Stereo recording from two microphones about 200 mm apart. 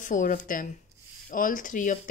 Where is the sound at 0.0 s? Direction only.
40° left (ahead or behind).